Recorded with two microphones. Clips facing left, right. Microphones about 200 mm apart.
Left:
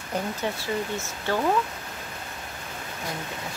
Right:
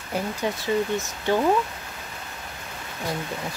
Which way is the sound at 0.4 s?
15° right (ahead or behind).